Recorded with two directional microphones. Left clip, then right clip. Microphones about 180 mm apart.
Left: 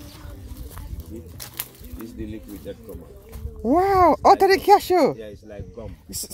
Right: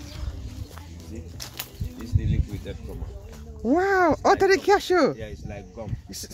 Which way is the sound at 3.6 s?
10° left (ahead or behind).